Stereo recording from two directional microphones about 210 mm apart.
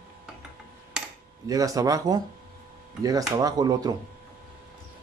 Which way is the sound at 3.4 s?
15° right (ahead or behind).